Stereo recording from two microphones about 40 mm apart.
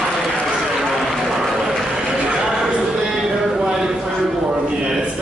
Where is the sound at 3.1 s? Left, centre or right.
Centre.